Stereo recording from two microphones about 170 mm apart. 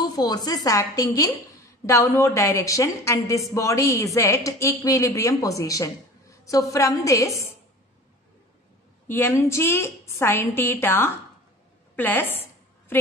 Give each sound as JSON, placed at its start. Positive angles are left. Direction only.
{"t": 0.0, "sound": "a woman's voice", "side_deg": 25}
{"t": 9.0, "sound": "a woman's voice", "side_deg": 15}